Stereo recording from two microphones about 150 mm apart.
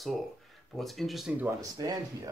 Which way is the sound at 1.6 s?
25° right (ahead or behind).